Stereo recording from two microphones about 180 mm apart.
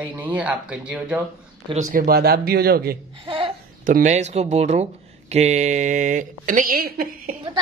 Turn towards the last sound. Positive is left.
turn(degrees=-55)  # may be behind; listen again after turning